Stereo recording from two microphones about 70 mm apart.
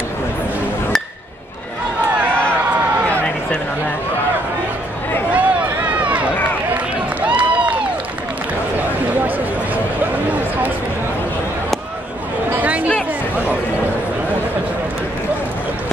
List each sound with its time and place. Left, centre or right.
5.3 s run: right
7.2 s a sound: centre
12.4 s chatter: right